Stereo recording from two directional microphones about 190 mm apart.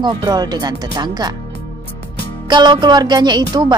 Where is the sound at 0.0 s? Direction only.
20° right (ahead or behind).